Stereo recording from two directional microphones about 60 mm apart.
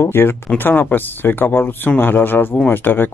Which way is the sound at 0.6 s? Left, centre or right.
Left.